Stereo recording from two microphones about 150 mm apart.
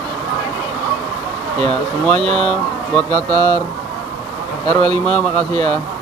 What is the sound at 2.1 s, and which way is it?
Speech, 35° right (ahead or behind).